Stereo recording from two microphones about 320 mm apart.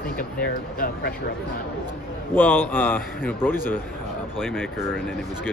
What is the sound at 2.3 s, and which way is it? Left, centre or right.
A man's voice, centre.